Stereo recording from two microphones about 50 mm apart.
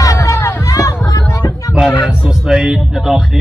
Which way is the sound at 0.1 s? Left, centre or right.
Left.